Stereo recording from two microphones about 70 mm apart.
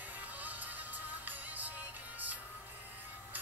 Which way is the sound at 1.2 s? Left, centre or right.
Right.